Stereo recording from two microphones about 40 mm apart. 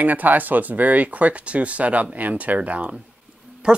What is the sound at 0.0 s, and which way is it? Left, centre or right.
Speech, right.